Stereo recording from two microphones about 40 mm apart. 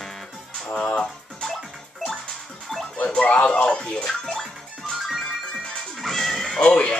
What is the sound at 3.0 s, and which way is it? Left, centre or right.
Speech, left.